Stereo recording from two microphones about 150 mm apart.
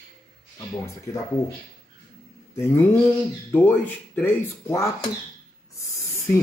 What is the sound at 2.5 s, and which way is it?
Speech, 20° left (ahead or behind).